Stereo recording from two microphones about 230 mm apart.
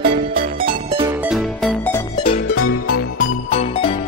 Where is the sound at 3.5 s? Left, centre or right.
Left.